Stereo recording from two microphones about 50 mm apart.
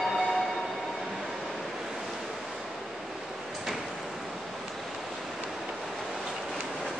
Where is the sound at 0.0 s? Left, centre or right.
Centre.